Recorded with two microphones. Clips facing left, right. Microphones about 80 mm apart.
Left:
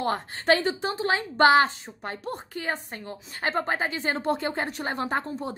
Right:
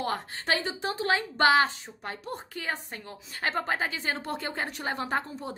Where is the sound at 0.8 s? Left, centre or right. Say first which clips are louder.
Left 1 dB; left.